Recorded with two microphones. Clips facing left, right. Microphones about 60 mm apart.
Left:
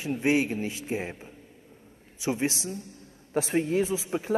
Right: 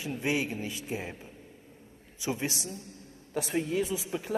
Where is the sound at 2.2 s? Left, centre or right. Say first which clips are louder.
Left 5 dB; left.